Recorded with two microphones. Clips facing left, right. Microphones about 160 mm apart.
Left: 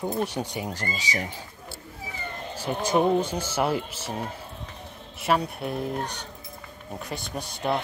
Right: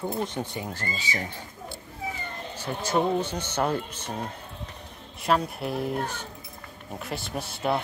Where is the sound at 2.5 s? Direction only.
10° left (ahead or behind).